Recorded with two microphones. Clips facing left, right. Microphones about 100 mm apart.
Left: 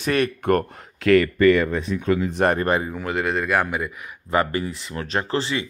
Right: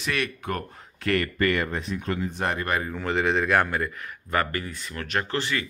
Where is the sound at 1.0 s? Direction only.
90° left.